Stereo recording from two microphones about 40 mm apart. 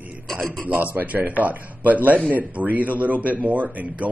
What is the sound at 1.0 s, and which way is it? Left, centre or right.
Speech, right.